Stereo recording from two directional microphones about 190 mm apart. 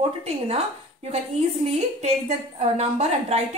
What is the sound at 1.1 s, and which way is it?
Speech, 35° right (ahead or behind).